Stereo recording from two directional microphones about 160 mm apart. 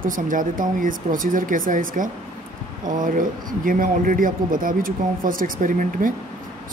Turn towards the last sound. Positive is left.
turn(degrees=-55)  # may be behind; listen again after turning